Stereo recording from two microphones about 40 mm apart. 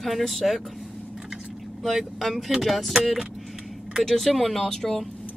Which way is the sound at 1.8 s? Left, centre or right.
Centre.